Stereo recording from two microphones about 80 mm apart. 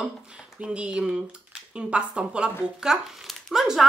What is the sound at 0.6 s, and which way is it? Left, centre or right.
Speech, centre.